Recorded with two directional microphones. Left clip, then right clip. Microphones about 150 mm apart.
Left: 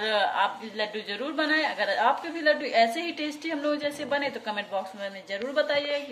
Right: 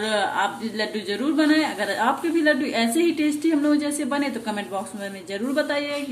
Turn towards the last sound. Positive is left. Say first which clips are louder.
# right 2 dB
turn(degrees=30)  # may be behind; listen again after turning